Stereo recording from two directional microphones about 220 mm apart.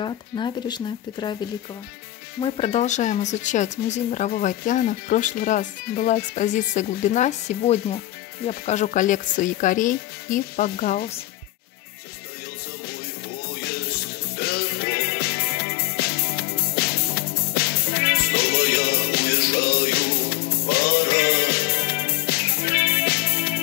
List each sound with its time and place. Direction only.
0.0 s speech: 20° left (ahead or behind)
2.4 s speech: 25° left (ahead or behind); by 11.1 s 40° left (ahead or behind)
13.5 s music: 45° left (ahead or behind)